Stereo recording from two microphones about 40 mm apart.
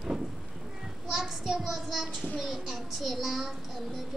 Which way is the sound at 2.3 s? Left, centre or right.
Centre.